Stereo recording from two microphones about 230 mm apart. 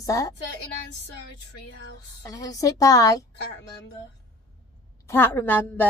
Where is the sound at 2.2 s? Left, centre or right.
Centre.